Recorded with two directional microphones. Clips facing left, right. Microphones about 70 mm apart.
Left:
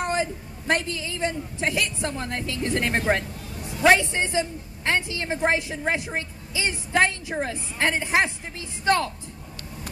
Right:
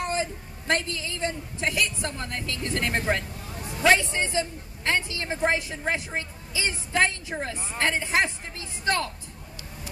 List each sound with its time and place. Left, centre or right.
0.0 s a woman's voice: left